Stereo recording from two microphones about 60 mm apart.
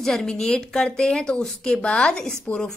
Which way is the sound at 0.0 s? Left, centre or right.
Centre.